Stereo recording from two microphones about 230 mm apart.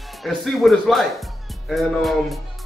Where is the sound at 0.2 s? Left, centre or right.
Centre.